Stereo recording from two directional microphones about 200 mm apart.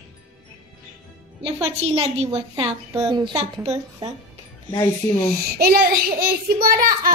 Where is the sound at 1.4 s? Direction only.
30° right (ahead or behind).